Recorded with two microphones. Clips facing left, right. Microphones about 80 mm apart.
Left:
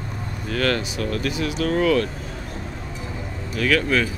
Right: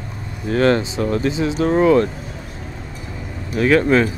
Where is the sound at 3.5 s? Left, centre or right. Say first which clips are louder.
Right 6 dB; right.